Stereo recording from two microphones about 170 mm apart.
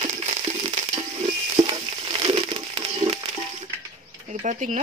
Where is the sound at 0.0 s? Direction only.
40° right (ahead or behind).